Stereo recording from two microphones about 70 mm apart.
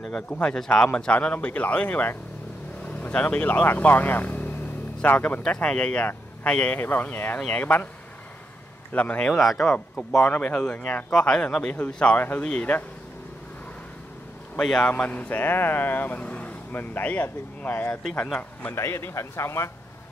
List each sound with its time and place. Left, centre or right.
0.3 s speech: centre
7.3 s speech: centre
7.6 s speech: left
8.9 s speech: centre
9.4 s speech: centre
10.3 s speech: left
10.6 s speech: centre
12.2 s speech: left
14.6 s speech: centre; by 17.8 s left
18.8 s a man's voice: left